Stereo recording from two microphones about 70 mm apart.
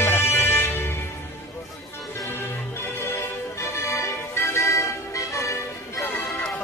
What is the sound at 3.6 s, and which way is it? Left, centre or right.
Music, left.